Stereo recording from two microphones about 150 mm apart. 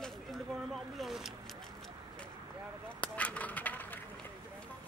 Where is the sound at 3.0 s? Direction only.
10° left (ahead or behind).